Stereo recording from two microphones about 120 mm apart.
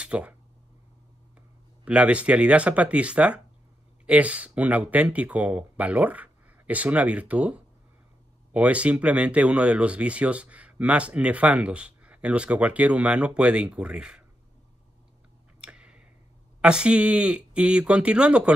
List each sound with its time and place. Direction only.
0.0 s a sound: 10° right (ahead or behind)
1.9 s speech: 10° right (ahead or behind)
15.6 s tick-tock: 10° right (ahead or behind)
16.6 s speech: 10° right (ahead or behind)